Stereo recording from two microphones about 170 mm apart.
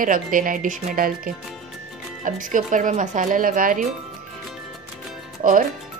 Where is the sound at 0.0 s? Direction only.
55° right (ahead or behind).